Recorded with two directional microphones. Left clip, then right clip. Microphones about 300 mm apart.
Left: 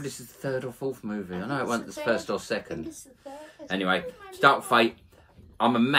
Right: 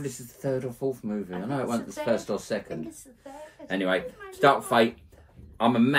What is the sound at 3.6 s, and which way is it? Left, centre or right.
Speech, centre.